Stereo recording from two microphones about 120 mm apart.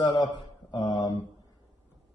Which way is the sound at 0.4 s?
35° left (ahead or behind).